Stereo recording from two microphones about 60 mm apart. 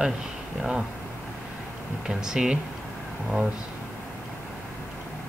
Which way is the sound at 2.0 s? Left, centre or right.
Centre.